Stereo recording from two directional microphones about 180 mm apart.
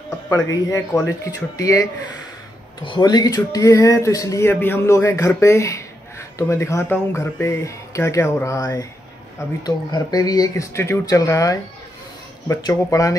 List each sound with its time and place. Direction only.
0.5 s speech: 20° left (ahead or behind)